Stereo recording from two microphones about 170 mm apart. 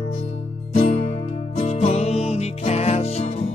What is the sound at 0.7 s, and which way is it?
Music, 45° left (ahead or behind).